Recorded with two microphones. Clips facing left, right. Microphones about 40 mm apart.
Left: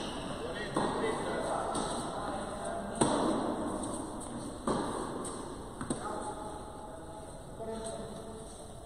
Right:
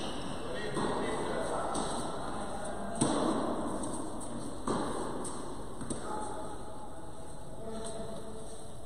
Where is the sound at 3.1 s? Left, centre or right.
Centre.